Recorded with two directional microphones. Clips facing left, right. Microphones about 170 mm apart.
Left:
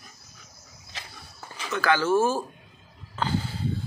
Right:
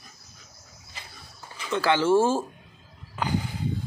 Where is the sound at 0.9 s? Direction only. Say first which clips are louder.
Left 3 dB; 90° left.